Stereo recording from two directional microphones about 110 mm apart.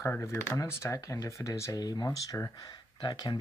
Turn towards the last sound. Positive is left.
turn(degrees=40)  # may be behind; listen again after turning